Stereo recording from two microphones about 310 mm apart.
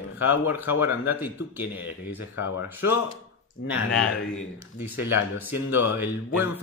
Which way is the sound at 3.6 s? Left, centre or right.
Left.